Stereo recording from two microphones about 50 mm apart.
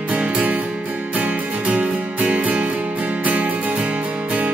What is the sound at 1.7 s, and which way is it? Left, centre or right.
Music, right.